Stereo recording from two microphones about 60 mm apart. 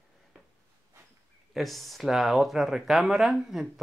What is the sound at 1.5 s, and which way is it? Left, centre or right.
Speech, centre.